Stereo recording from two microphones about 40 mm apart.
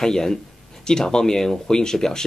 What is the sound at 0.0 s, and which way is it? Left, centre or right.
Speech, centre.